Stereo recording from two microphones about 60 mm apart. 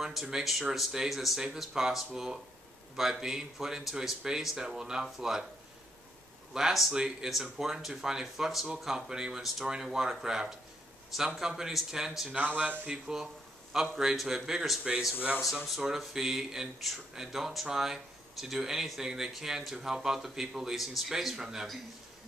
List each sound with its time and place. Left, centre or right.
0.0 s speech: centre
6.5 s speech: centre
12.4 s speech: right
12.8 s speech: centre